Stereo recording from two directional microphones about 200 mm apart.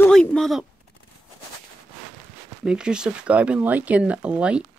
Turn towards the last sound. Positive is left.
turn(degrees=-5)  # may be behind; listen again after turning